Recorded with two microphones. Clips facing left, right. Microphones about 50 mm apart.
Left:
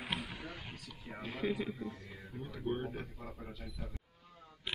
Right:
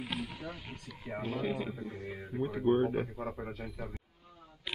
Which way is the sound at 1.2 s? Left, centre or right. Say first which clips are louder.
Right 2 dB; centre.